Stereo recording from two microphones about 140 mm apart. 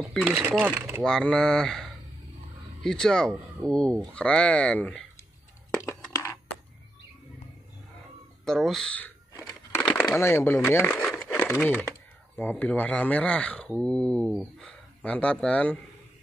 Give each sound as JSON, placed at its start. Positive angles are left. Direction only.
{"t": 0.5, "sound": "speech", "side_deg": -10}
{"t": 1.0, "sound": "speech", "side_deg": 5}
{"t": 5.8, "sound": "a sound", "side_deg": 20}
{"t": 8.5, "sound": "speech", "side_deg": 0}
{"t": 11.1, "sound": "crumpling", "side_deg": 15}
{"t": 12.4, "sound": "speech", "side_deg": 15}